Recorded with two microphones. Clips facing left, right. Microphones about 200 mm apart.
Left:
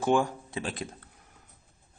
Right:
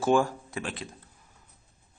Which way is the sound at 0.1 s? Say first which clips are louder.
Right 2 dB; 20° left (ahead or behind).